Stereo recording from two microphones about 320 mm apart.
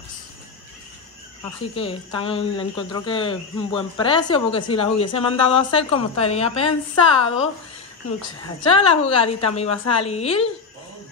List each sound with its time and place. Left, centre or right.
1.8 s speech: centre
8.7 s speech: centre